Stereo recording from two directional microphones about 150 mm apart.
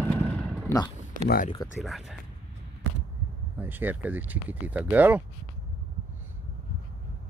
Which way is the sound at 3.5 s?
15° right (ahead or behind).